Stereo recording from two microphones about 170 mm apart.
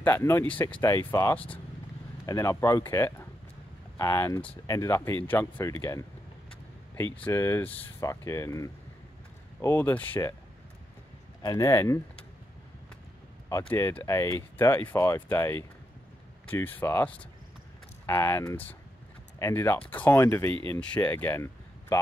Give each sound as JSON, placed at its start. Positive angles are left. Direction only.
{"t": 0.0, "sound": "speech", "side_deg": 15}
{"t": 7.2, "sound": "speech", "side_deg": 15}
{"t": 11.4, "sound": "speech", "side_deg": 20}
{"t": 13.5, "sound": "speech", "side_deg": 15}